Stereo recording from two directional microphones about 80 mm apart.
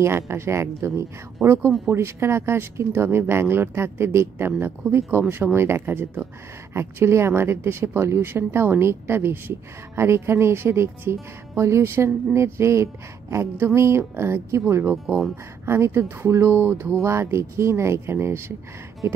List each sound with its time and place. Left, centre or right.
0.0 s speech: right
15.0 s speech: centre
15.6 s speech: right